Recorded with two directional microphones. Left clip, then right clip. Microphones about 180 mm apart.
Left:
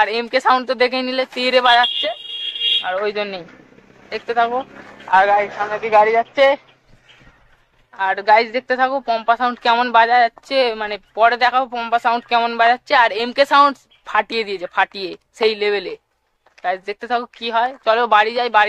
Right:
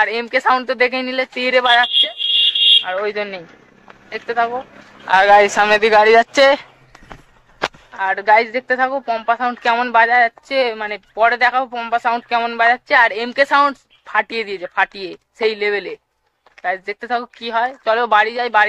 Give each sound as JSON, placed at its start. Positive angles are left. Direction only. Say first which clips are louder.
{"t": 0.0, "sound": "speech", "louder": "even", "side_deg": 10}
{"t": 5.1, "sound": "speech", "louder": "right 4 dB", "side_deg": -40}
{"t": 7.9, "sound": "speech", "louder": "even", "side_deg": 5}